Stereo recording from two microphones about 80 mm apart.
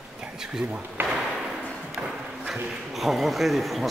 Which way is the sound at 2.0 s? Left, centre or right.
Right.